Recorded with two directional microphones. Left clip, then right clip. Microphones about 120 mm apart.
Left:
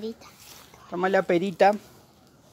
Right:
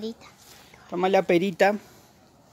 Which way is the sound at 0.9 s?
65° right (ahead or behind).